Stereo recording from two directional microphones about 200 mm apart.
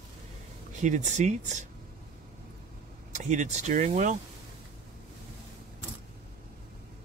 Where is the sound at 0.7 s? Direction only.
35° right (ahead or behind).